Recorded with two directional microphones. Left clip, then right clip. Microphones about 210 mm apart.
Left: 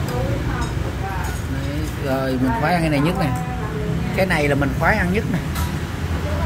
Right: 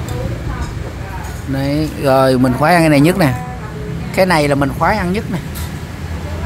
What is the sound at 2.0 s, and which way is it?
Speech, 40° right (ahead or behind).